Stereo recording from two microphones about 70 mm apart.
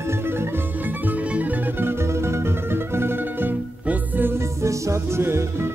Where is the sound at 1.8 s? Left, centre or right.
Right.